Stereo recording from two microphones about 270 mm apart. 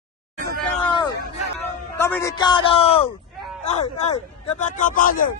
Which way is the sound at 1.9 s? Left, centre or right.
Centre.